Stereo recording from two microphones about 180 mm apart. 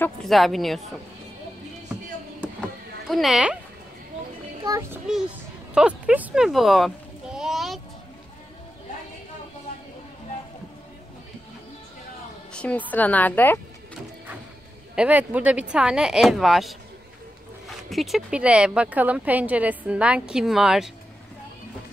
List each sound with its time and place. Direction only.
0.0 s a woman's voice: centre (ahead or behind)
3.1 s a woman's voice: centre (ahead or behind)
4.6 s speech: 15° right (ahead or behind)
5.8 s sheep: 5° right (ahead or behind)
12.5 s a woman's voice: 10° left (ahead or behind)
15.0 s a woman's voice: 10° right (ahead or behind)
17.8 s speech: centre (ahead or behind)